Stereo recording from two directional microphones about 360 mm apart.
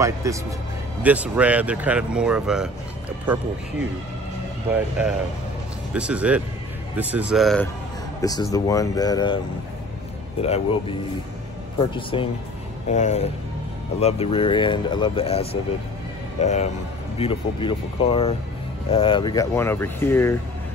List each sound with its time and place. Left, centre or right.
0.0 s a man's voice: centre
4.7 s speech: centre
10.4 s speech: centre